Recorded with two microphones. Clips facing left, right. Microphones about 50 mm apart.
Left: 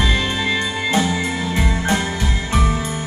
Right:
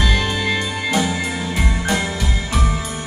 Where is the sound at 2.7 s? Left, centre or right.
Centre.